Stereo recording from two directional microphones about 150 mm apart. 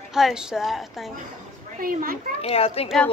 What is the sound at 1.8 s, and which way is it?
Speech, 70° right (ahead or behind).